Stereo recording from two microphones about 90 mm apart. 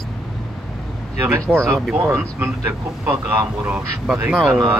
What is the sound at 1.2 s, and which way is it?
Speech, 25° right (ahead or behind).